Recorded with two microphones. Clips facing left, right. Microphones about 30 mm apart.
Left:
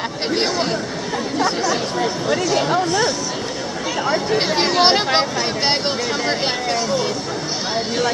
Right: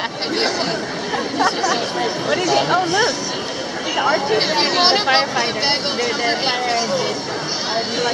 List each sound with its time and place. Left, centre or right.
1.1 s speech: centre